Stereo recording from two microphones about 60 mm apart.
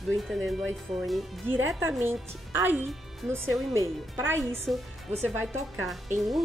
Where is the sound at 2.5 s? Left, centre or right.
Right.